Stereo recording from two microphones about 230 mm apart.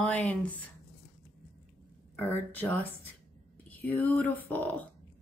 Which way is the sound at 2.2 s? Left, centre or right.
Centre.